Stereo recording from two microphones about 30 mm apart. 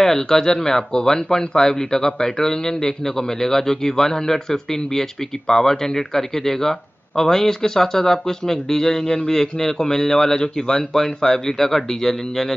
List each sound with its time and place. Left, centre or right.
0.0 s a man's voice: centre